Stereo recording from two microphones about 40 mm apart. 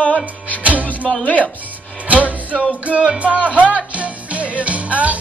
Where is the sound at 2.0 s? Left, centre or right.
Right.